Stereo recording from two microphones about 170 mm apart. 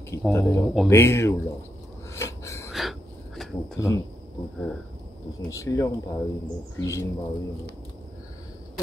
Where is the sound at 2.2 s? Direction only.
15° left (ahead or behind).